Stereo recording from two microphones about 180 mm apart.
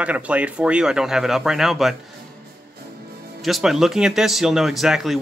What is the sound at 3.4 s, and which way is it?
Speech, centre (ahead or behind).